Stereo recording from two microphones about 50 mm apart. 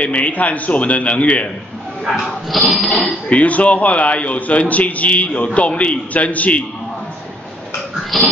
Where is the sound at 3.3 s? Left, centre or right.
Left.